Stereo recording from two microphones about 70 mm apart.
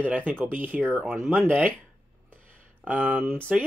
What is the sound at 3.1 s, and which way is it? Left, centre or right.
Speech, right.